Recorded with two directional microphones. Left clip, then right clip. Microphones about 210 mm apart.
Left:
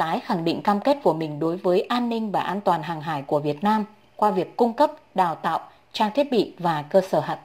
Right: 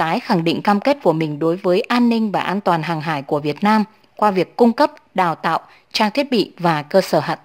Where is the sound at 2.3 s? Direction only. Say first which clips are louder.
Right 4 dB; 25° right (ahead or behind).